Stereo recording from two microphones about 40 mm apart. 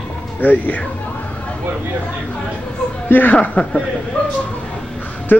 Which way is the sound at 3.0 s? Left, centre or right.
Left.